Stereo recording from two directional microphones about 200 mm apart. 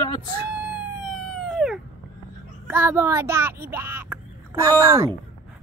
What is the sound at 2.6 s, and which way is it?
Speech, 10° right (ahead or behind).